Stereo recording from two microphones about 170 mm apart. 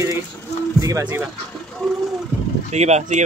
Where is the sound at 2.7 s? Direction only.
40° right (ahead or behind).